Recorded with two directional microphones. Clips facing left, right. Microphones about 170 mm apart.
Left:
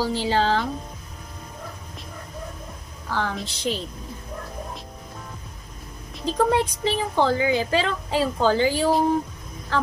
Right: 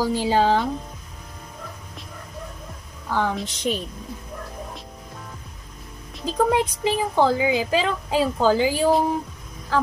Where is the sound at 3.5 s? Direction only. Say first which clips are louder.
Right 2 dB; 15° right (ahead or behind).